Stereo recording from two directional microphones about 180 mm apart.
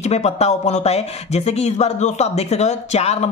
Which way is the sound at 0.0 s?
35° left (ahead or behind).